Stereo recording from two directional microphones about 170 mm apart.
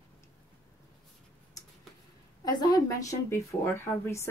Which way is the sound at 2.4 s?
20° left (ahead or behind).